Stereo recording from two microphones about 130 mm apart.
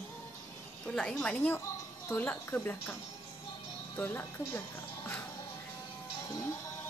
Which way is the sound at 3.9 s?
15° left (ahead or behind).